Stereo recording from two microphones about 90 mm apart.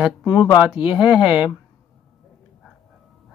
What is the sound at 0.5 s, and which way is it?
Speech, 15° right (ahead or behind).